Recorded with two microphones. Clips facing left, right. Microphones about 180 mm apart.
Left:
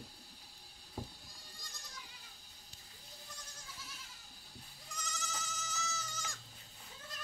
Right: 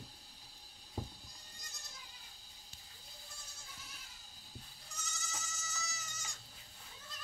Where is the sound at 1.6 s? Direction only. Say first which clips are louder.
Left 2 dB; 90° left.